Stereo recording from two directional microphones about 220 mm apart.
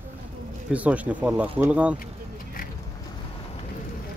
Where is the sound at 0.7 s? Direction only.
5° right (ahead or behind).